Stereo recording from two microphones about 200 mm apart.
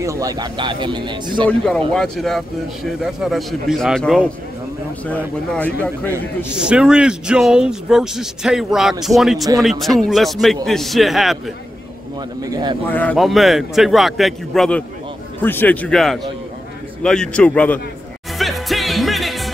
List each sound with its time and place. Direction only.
0.0 s speech: 15° right (ahead or behind)
1.5 s a man's voice: 5° left (ahead or behind)
6.5 s speech: 5° right (ahead or behind)
12.4 s speech: 20° right (ahead or behind)
12.9 s a man's voice: 5° left (ahead or behind)
18.4 s music: centre (ahead or behind)